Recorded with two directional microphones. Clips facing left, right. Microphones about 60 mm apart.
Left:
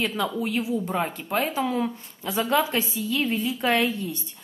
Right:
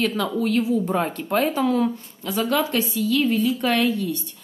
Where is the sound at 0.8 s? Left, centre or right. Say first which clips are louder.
Right 4 dB; centre.